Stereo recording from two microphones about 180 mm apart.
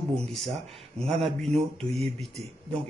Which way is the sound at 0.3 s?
Centre (ahead or behind).